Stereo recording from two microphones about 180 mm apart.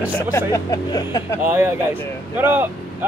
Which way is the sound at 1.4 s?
10° right (ahead or behind).